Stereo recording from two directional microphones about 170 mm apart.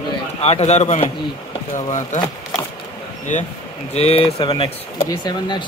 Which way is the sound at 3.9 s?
35° left (ahead or behind).